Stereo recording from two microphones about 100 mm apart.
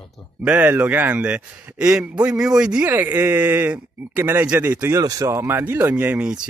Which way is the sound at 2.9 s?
20° right (ahead or behind).